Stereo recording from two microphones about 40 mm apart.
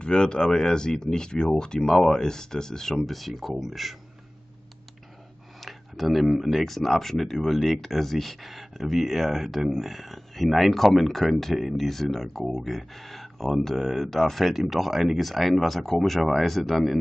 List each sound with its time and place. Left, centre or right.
0.0 s speech: left; by 3.9 s centre
5.6 s speech: centre
14.4 s speech: centre